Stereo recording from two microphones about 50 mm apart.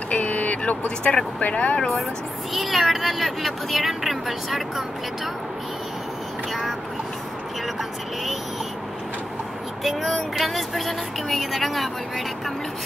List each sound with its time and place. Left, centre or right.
0.1 s speech: left
2.5 s speech: centre
9.8 s speech: centre